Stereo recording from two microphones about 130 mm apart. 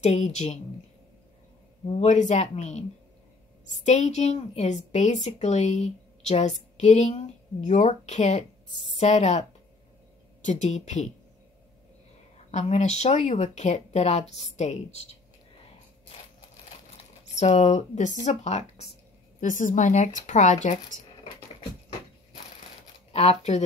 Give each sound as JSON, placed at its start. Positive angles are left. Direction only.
{"t": 0.0, "sound": "a woman's voice", "side_deg": 60}
{"t": 1.9, "sound": "a woman's voice", "side_deg": 55}
{"t": 10.4, "sound": "a woman's voice", "side_deg": 65}
{"t": 12.4, "sound": "a woman's voice", "side_deg": 60}
{"t": 16.9, "sound": "speech", "side_deg": 60}
{"t": 19.4, "sound": "a woman's voice", "side_deg": 75}
{"t": 20.6, "sound": "speech", "side_deg": 85}
{"t": 23.1, "sound": "a woman's voice", "side_deg": 55}